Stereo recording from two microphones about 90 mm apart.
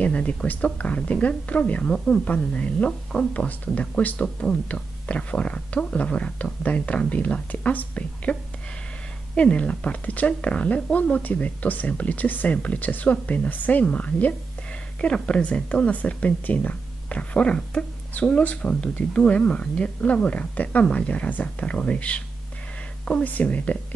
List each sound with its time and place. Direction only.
0.0 s speech: 15° left (ahead or behind)